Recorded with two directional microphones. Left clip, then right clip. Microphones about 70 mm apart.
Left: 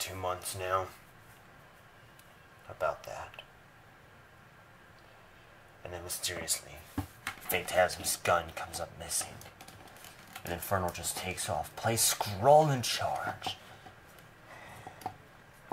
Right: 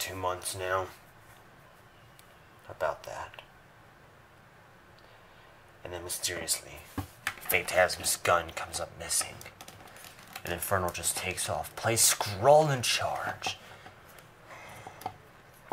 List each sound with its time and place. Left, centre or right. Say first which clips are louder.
0.0 s speech: right 3 dB; right
2.8 s speech: right 1 dB; right
5.8 s speech: right 3 dB; right
10.5 s speech: right 3 dB; right
14.5 s a sound: right 3 dB; right